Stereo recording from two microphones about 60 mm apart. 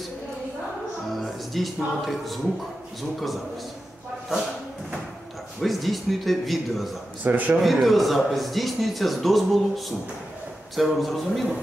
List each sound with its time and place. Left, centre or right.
1.0 s music: centre
3.0 s a man's voice: centre
5.6 s a man's voice: centre
7.2 s a man's voice: right
7.6 s a man's voice: centre